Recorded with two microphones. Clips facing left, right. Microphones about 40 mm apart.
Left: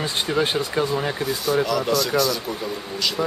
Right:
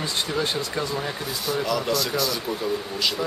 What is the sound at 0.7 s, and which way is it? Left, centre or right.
Speech, centre.